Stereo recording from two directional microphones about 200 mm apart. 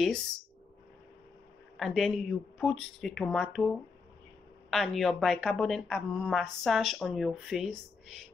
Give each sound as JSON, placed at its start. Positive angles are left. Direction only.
{"t": 1.8, "sound": "a woman's voice", "side_deg": 0}